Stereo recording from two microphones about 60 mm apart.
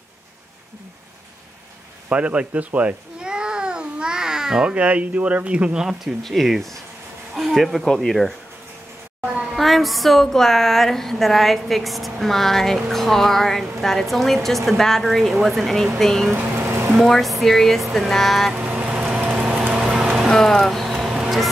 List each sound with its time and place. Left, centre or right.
2.0 s a child's voice: right
6.2 s a woman's voice: centre
9.2 s a sound: centre
9.5 s a woman's voice: centre
16.3 s vehicle: right
16.9 s a woman's voice: centre
18.5 s vehicle: right
20.2 s speech: centre
20.9 s vehicle: centre